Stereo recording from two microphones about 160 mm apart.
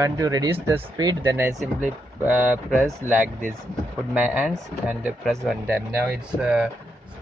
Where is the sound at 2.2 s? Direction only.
10° right (ahead or behind).